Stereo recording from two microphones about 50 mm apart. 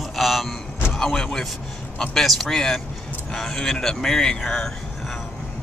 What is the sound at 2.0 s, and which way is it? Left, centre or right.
Speech, centre.